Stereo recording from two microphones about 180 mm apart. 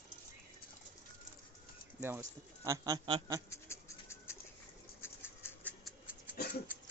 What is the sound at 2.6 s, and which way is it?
Speech, 20° right (ahead or behind).